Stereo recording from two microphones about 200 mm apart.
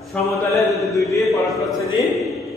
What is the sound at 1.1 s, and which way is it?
Speech, 15° left (ahead or behind).